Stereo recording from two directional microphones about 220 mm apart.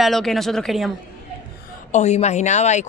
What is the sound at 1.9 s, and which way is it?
Speech, 30° left (ahead or behind).